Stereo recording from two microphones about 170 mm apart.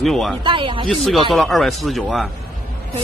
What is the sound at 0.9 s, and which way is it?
A man's voice, centre (ahead or behind).